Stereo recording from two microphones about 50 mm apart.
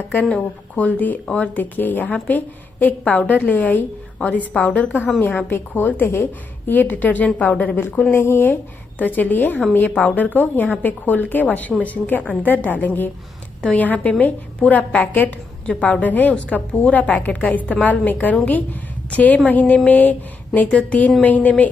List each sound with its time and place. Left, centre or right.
0.3 s a woman's voice: left
8.1 s speech: left
8.9 s speech: left
15.6 s a woman's voice: left